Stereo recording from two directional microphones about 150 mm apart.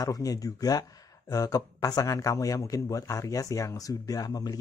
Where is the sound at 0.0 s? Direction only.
25° left (ahead or behind).